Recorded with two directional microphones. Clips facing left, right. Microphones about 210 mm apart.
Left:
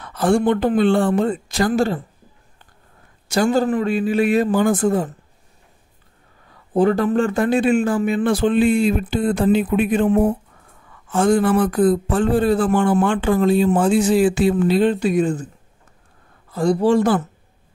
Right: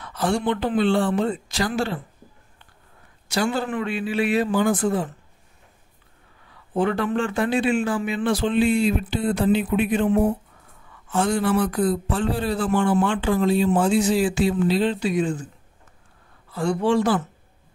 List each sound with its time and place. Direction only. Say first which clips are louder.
0.0 s speech: left 6 dB; 50° left (ahead or behind)
3.3 s speech: left 7 dB; 45° left (ahead or behind)
6.7 s speech: left 6 dB; 40° left (ahead or behind)
16.5 s a man's voice: left 5 dB; 40° left (ahead or behind)